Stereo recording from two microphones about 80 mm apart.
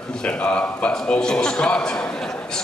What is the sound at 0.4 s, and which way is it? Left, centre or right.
A man's voice, centre.